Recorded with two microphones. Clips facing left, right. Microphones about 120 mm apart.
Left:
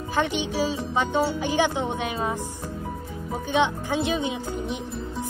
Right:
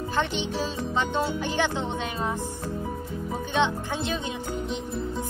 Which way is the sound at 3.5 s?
15° left (ahead or behind).